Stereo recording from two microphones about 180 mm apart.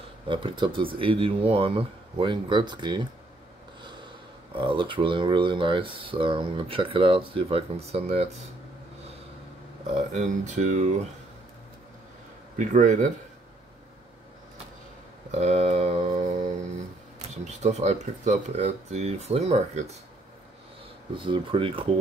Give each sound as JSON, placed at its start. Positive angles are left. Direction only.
{"t": 0.3, "sound": "speech", "side_deg": -25}
{"t": 4.6, "sound": "speech", "side_deg": -30}
{"t": 9.9, "sound": "speech", "side_deg": -40}
{"t": 12.5, "sound": "speech", "side_deg": -45}
{"t": 15.3, "sound": "a sound", "side_deg": -35}
{"t": 17.5, "sound": "speech", "side_deg": -40}
{"t": 21.1, "sound": "speech", "side_deg": -25}